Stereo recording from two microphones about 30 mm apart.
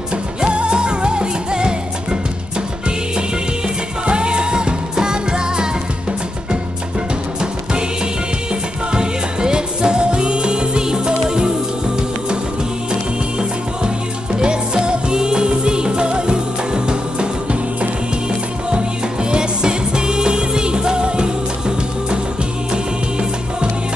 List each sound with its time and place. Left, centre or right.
0.5 s music: right
4.0 s music: right
8.9 s music: right
14.4 s music: right
19.3 s music: right